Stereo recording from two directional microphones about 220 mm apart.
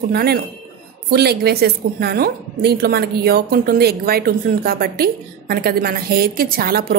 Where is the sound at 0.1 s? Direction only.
45° right (ahead or behind).